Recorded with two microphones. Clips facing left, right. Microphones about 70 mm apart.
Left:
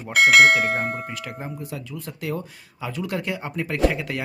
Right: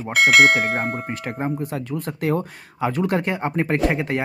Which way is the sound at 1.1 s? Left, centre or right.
Right.